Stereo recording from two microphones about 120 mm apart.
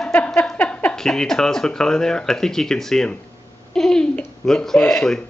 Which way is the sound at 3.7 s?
5° left (ahead or behind).